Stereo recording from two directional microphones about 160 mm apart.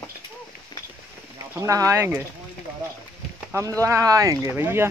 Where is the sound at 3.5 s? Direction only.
20° right (ahead or behind).